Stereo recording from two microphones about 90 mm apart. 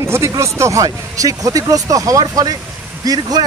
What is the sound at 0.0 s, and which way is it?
Speech, 35° right (ahead or behind).